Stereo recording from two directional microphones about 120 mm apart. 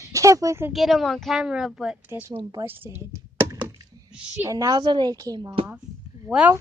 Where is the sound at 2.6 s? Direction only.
15° right (ahead or behind).